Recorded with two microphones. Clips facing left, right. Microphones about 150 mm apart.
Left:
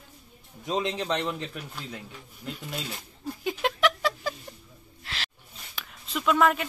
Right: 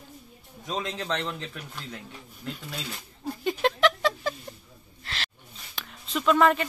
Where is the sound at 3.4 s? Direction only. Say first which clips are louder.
Right 2 dB; 5° left (ahead or behind).